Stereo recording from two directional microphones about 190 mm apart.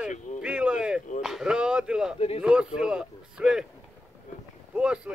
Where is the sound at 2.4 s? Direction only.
5° right (ahead or behind).